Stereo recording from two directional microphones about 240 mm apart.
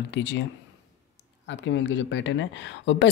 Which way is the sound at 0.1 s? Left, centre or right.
Left.